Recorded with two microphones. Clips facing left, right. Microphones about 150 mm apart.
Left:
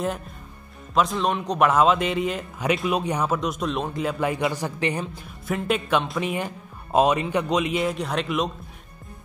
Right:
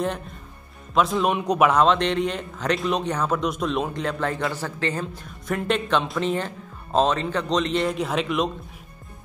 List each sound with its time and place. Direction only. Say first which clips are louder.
0.9 s a man's voice: right 1 dB; centre (ahead or behind)
1.7 s a man's voice: even; 5° left (ahead or behind)
5.0 s speech: even; 5° left (ahead or behind)